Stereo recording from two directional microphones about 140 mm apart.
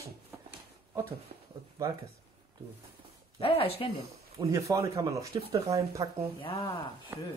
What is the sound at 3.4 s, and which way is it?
Speech, 45° left (ahead or behind).